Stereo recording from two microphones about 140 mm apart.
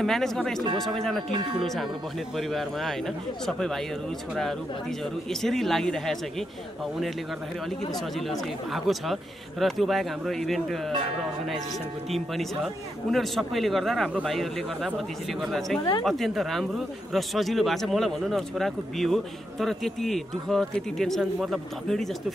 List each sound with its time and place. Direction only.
0.0 s speech: 5° left (ahead or behind)
1.3 s chime: 35° right (ahead or behind)
2.3 s speech: centre (ahead or behind)
5.3 s speech: centre (ahead or behind)
8.3 s speech: centre (ahead or behind)
13.1 s speech: centre (ahead or behind)